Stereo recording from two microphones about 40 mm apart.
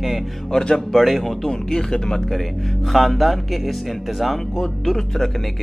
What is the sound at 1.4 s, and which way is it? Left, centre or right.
Speech, centre.